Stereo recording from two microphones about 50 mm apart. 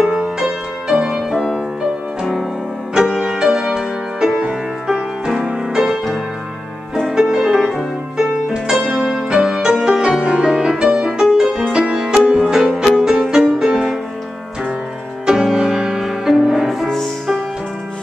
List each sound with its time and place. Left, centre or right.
0.0 s music: centre
2.9 s music: centre
7.2 s music: centre
15.2 s music: centre